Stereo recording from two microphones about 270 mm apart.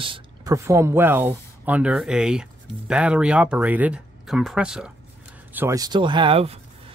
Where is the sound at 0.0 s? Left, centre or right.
Centre.